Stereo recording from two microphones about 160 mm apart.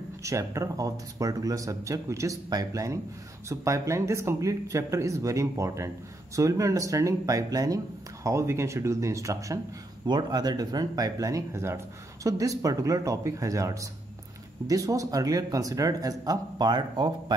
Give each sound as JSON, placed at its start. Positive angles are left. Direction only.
{"t": 0.2, "sound": "speech", "side_deg": -20}